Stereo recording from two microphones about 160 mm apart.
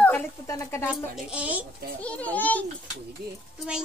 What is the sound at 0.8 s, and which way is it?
Speech, 5° right (ahead or behind).